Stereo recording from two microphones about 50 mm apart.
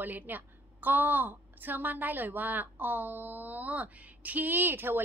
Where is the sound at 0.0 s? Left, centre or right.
Right.